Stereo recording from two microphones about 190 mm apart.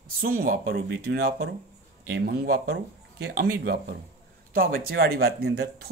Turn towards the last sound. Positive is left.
turn(degrees=-60)  # may be behind; listen again after turning